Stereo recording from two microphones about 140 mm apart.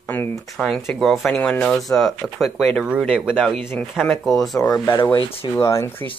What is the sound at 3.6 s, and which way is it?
Speech, 15° left (ahead or behind).